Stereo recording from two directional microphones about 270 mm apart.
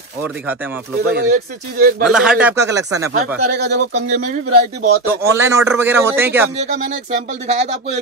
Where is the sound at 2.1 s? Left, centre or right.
Centre.